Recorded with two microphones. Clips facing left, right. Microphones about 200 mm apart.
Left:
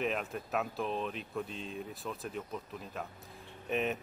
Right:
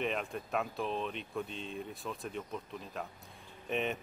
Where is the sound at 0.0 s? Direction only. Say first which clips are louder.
Left 1 dB; centre (ahead or behind).